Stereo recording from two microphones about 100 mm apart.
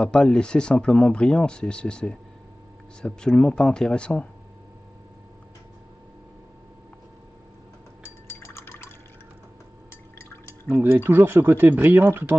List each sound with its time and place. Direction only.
0.0 s speech: 5° left (ahead or behind)
8.4 s a sound: 25° left (ahead or behind)
10.7 s speech: 20° right (ahead or behind)